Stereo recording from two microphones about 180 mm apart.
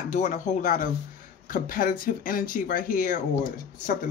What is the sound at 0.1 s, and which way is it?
Speech, 40° left (ahead or behind).